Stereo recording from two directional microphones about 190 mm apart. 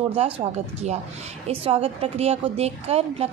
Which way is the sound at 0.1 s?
30° right (ahead or behind).